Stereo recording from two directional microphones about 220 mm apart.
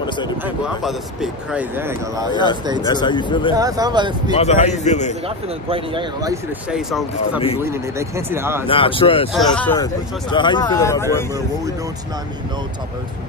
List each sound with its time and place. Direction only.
0.8 s speech: 5° right (ahead or behind)
2.9 s speech: 20° left (ahead or behind)
3.5 s speech: 15° right (ahead or behind)
4.4 s a man's voice: 30° left (ahead or behind)
5.7 s speech: 20° right (ahead or behind)
6.7 s speech: centre (ahead or behind)
7.6 s speech: 10° right (ahead or behind)
8.6 s speech: 25° left (ahead or behind)
9.6 s speech: 10° left (ahead or behind)
10.3 s speech: 20° left (ahead or behind)